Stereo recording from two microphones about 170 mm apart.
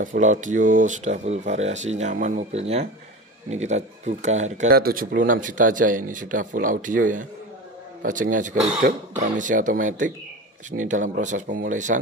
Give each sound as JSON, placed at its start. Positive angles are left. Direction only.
{"t": 0.0, "sound": "speech", "side_deg": -50}
{"t": 4.6, "sound": "speech", "side_deg": -60}